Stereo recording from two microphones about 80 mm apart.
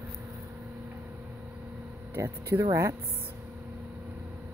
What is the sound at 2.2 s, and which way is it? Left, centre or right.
Speech, right.